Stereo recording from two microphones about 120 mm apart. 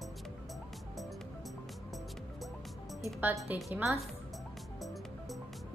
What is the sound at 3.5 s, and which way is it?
Speech, 15° right (ahead or behind).